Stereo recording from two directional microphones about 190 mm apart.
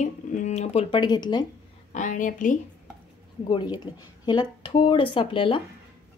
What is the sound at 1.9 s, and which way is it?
Speech, 40° left (ahead or behind).